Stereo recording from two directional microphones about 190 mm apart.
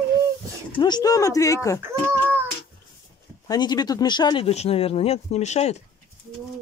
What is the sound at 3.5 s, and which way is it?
Speech, 20° left (ahead or behind).